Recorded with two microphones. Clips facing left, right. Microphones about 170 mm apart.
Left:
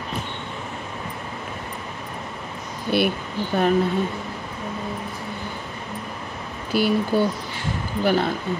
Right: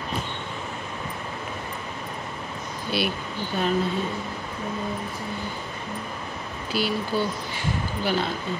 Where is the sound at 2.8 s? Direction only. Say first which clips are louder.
Left 6 dB; 55° left (ahead or behind).